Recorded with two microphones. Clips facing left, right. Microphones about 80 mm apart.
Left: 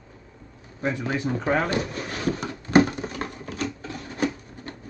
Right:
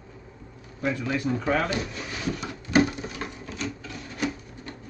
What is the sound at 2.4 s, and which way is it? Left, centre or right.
Patter, left.